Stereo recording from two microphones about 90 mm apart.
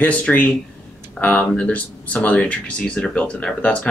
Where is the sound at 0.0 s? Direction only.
15° left (ahead or behind).